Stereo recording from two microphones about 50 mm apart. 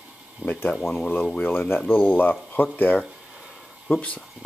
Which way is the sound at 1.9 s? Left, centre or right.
Left.